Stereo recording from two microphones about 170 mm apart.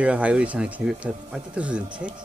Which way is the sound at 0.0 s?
5° right (ahead or behind).